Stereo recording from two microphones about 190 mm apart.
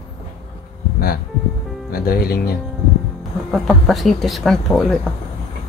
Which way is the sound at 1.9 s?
55° left (ahead or behind).